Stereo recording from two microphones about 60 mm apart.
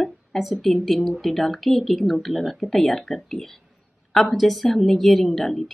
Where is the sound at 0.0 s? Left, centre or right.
Centre.